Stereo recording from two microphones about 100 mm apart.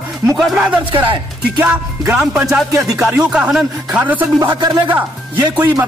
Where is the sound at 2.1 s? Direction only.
10° right (ahead or behind).